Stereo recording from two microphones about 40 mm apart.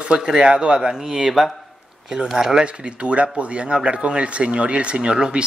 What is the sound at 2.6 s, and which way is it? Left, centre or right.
Speech, right.